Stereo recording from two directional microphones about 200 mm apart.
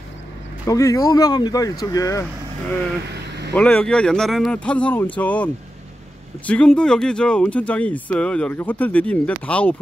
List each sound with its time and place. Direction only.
0.7 s speech: 15° left (ahead or behind)
3.5 s speech: 5° left (ahead or behind)